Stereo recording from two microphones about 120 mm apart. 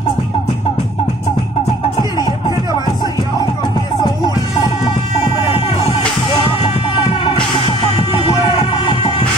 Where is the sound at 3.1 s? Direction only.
40° left (ahead or behind).